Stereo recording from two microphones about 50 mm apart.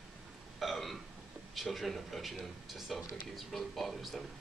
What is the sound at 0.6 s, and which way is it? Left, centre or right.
Hiccup, centre.